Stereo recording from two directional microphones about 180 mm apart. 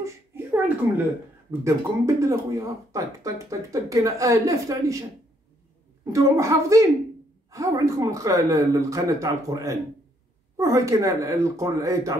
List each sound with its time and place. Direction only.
0.0 s a sound: 10° right (ahead or behind)
1.5 s speech: 15° right (ahead or behind)
6.1 s speech: 15° right (ahead or behind)